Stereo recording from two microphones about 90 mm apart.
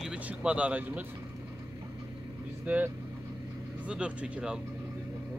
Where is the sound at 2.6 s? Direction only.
15° right (ahead or behind).